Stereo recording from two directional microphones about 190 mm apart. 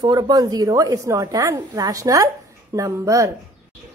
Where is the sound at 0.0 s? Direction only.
20° right (ahead or behind).